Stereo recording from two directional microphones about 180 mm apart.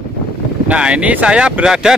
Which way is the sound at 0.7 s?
5° right (ahead or behind).